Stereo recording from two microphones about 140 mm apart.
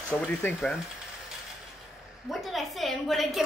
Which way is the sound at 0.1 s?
10° left (ahead or behind).